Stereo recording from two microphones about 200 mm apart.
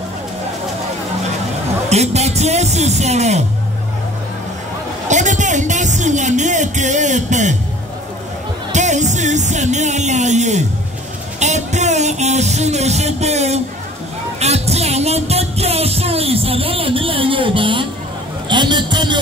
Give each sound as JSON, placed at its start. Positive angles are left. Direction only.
{"t": 1.9, "sound": "speech", "side_deg": -35}
{"t": 5.0, "sound": "music", "side_deg": -35}
{"t": 8.7, "sound": "music", "side_deg": -35}
{"t": 11.3, "sound": "speech", "side_deg": -35}
{"t": 14.4, "sound": "music", "side_deg": -30}
{"t": 18.5, "sound": "a sound", "side_deg": -20}